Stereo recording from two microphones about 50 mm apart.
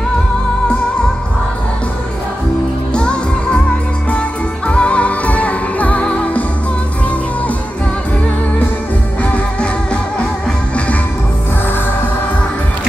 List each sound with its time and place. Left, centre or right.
2.9 s music: centre
4.6 s music: left
9.2 s music: left